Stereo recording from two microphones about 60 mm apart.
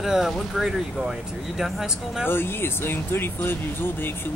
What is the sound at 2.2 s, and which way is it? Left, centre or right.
Speech, left.